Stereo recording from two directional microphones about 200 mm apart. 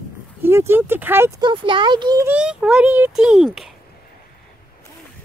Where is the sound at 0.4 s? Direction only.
10° right (ahead or behind).